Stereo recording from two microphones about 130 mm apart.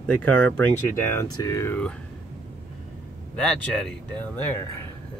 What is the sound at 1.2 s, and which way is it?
Speech, 25° left (ahead or behind).